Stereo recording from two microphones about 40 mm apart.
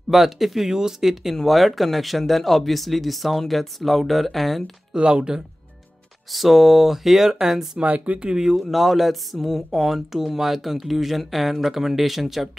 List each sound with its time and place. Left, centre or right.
0.1 s speech: centre
1.3 s speech: centre
4.9 s speech: right
6.3 s speech: centre
7.8 s speech: right
8.2 s speech: right
8.5 s speech: centre